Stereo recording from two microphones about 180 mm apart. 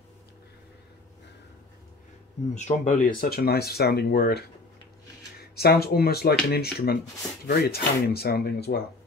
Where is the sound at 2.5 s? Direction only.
40° left (ahead or behind); by 8.8 s 65° left (ahead or behind).